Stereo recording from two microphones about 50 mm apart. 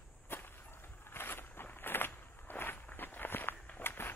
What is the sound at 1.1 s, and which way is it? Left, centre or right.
Walk, left.